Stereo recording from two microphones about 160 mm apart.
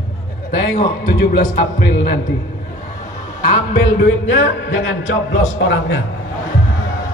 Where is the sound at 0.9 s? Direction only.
70° left (ahead or behind).